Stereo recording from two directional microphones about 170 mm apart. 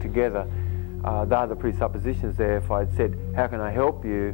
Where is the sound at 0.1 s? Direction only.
35° right (ahead or behind).